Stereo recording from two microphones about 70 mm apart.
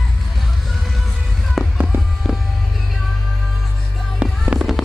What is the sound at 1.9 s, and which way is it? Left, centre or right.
Music, right.